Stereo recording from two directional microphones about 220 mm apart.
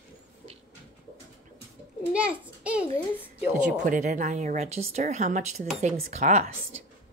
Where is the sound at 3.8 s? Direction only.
35° right (ahead or behind).